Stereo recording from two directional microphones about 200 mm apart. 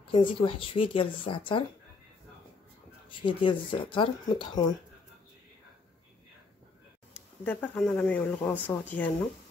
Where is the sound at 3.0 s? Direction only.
25° left (ahead or behind).